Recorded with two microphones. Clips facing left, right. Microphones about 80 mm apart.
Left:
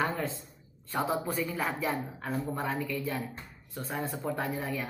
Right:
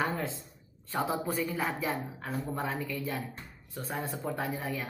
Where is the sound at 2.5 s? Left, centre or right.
Centre.